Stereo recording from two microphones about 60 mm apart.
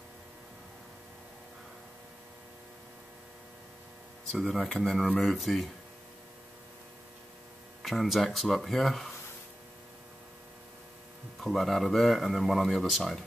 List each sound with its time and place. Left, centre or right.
4.3 s speech: centre
7.8 s speech: centre
11.3 s speech: centre